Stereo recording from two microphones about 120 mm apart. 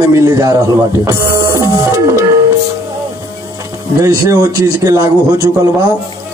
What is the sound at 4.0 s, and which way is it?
A man's voice, 25° right (ahead or behind).